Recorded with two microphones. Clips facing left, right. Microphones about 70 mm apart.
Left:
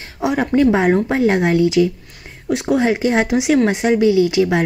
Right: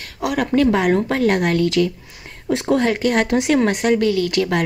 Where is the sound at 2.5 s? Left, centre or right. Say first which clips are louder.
Even; centre.